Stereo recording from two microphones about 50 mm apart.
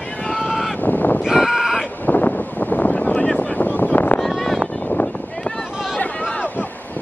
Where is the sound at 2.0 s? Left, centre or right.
Left.